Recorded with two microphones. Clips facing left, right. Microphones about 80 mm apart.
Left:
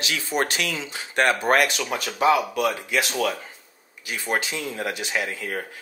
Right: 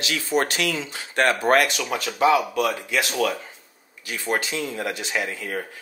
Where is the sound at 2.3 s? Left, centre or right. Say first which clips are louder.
Right 1 dB; centre.